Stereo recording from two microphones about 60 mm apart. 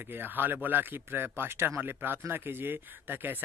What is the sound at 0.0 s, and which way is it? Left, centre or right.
Speech, right.